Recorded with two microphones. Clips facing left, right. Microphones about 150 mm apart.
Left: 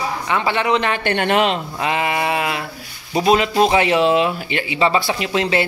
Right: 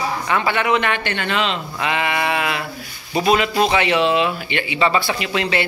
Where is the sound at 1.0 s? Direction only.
55° left (ahead or behind).